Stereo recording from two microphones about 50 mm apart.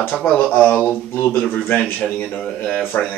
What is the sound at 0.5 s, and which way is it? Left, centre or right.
A man's voice, left.